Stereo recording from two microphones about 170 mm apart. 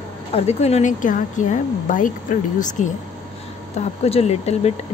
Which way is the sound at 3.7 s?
35° left (ahead or behind).